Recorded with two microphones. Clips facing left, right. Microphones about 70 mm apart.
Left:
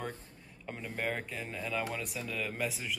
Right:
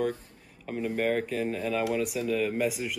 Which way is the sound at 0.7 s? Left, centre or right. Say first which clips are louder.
Right 9 dB; centre.